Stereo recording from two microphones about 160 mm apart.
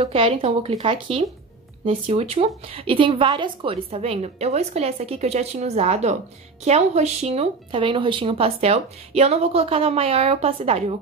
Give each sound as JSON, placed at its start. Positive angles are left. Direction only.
{"t": 0.0, "sound": "a woman's voice", "side_deg": -40}